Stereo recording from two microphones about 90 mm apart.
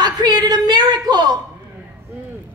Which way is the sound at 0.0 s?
50° right (ahead or behind).